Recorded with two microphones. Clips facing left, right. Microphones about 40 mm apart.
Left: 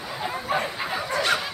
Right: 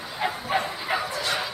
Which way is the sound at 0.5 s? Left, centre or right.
Centre.